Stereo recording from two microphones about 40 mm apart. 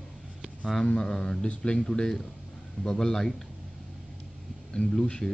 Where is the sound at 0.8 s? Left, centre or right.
Left.